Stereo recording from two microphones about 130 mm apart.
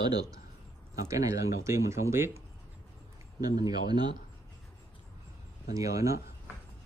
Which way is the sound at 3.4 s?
30° right (ahead or behind).